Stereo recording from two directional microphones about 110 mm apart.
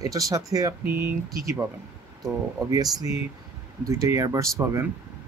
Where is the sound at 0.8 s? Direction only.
20° right (ahead or behind).